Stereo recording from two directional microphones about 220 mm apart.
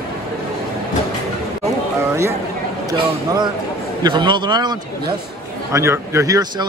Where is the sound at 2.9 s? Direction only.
20° right (ahead or behind).